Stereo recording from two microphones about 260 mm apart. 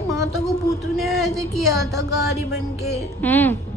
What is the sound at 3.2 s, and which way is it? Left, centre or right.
Speech, centre.